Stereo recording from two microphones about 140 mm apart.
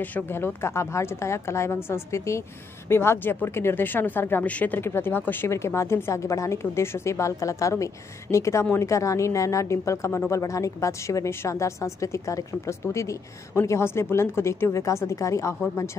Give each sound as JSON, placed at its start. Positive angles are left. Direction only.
{"t": 0.0, "sound": "speech", "side_deg": 15}